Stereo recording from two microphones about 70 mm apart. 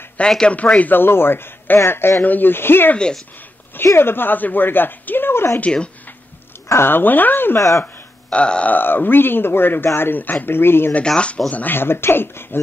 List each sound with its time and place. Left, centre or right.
0.2 s speech: centre; by 5.6 s left
5.6 s speech: centre
6.7 s speech: left
7.5 s speech: left
7.8 s a sound: centre
8.7 s speech: left
11.1 s speech: centre; by 12.5 s left